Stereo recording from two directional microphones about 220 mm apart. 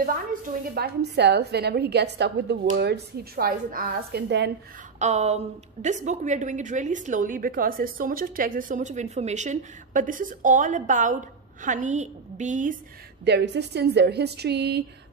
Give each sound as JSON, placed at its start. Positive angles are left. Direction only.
{"t": 0.0, "sound": "a woman's voice", "side_deg": -40}
{"t": 4.9, "sound": "a woman's voice", "side_deg": -30}
{"t": 13.2, "sound": "a woman's voice", "side_deg": -50}